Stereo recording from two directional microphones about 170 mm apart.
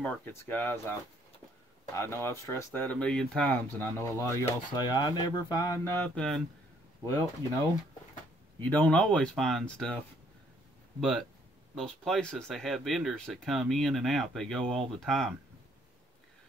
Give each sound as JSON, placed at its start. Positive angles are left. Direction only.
{"t": 0.0, "sound": "speech", "side_deg": 10}
{"t": 2.0, "sound": "speech", "side_deg": 15}
{"t": 5.9, "sound": "speech", "side_deg": 5}
{"t": 8.5, "sound": "speech", "side_deg": 10}
{"t": 11.0, "sound": "speech", "side_deg": 0}